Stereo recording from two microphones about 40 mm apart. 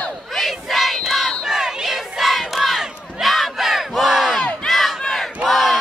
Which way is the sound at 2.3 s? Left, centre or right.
Centre.